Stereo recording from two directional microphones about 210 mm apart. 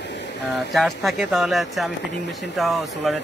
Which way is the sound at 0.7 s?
Centre (ahead or behind).